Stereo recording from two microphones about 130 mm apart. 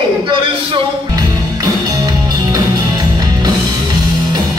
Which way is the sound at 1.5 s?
30° right (ahead or behind).